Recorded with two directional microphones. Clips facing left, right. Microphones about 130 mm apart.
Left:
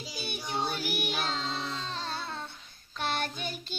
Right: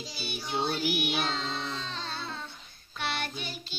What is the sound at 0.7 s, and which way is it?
Child singing, 45° left (ahead or behind).